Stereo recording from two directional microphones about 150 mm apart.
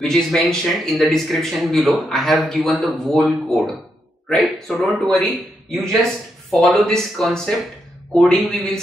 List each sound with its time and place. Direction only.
0.0 s speech: 5° left (ahead or behind)